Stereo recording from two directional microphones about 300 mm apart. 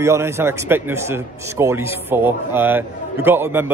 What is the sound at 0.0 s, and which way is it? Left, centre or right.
A man's voice, centre.